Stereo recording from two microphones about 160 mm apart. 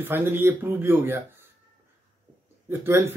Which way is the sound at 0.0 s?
15° right (ahead or behind).